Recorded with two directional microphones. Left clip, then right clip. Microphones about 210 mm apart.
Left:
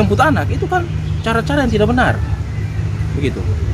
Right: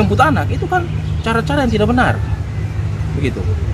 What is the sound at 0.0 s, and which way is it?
Speech, 10° left (ahead or behind).